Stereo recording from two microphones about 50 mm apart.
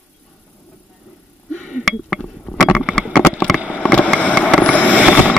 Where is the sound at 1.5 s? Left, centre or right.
Centre.